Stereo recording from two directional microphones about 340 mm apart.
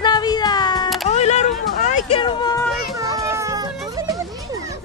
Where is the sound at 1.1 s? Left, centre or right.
Centre.